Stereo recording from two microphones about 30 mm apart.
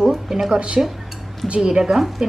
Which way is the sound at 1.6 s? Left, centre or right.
Right.